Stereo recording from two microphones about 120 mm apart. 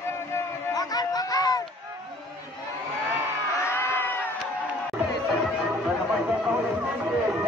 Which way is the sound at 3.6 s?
20° left (ahead or behind).